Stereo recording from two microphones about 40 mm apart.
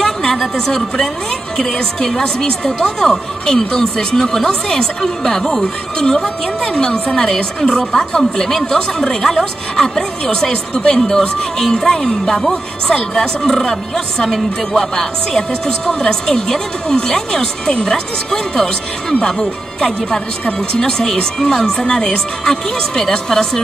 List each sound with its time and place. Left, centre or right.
0.0 s a woman's voice: centre